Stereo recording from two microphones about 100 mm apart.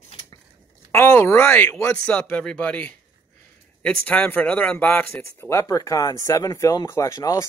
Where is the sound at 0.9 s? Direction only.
25° left (ahead or behind).